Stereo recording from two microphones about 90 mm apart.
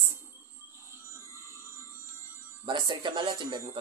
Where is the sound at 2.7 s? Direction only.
60° right (ahead or behind).